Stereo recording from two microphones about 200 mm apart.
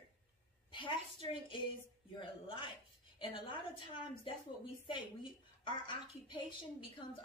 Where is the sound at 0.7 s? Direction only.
25° left (ahead or behind).